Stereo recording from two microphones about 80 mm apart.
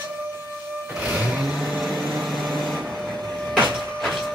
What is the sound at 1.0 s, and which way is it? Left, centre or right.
Vehicle, centre.